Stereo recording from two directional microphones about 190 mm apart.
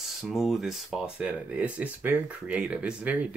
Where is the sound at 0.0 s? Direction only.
Centre (ahead or behind).